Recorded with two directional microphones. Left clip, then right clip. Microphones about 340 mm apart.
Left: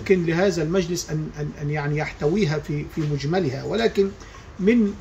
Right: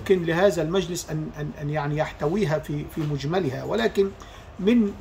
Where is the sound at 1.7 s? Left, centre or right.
Right.